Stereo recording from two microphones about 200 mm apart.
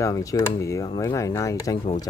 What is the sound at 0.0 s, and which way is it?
Speech, 15° left (ahead or behind).